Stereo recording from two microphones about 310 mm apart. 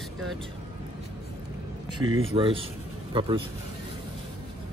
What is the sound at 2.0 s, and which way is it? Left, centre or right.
Speech, centre.